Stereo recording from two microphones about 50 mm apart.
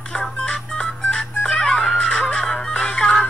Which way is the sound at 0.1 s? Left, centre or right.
Centre.